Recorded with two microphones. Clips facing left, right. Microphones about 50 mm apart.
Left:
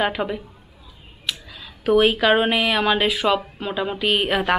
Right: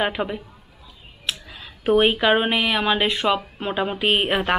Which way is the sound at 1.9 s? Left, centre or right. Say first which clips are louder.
Left 1 dB; centre.